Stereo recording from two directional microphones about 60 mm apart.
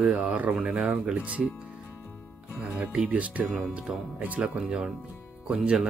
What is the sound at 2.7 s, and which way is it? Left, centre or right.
Speech, right.